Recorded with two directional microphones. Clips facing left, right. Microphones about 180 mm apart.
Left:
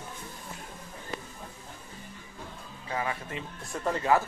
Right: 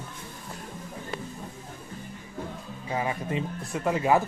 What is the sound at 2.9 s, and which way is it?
Speech, 20° right (ahead or behind).